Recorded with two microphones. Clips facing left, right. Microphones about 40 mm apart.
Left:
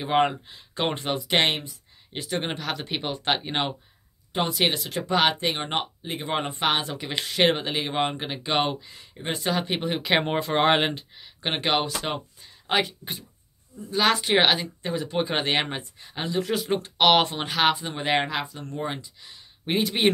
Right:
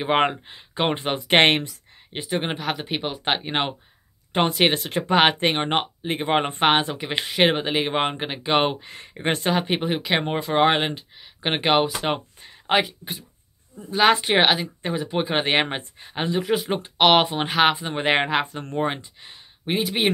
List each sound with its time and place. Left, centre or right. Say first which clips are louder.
0.0 s speech: right 2 dB; right
0.7 s speech: right 3 dB; right
1.1 s speech: right 7 dB; right
2.3 s speech: right 3 dB; centre
4.3 s speech: right 4 dB; right
6.9 s speech: right 3 dB; right
8.7 s speech: right 2 dB; right
9.5 s speech: right 1 dB; centre
10.0 s speech: even; centre
11.4 s speech: right 5 dB; centre
12.8 s speech: right 1 dB; centre
13.8 s speech: right 4 dB; centre; by 19.3 s right
19.6 s speech: right 1 dB; centre